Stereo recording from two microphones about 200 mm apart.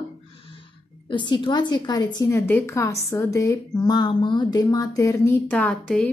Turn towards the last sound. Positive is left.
turn(degrees=5)  # may be behind; listen again after turning